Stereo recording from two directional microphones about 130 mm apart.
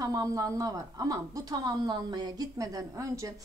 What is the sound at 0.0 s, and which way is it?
A woman's voice, 25° right (ahead or behind).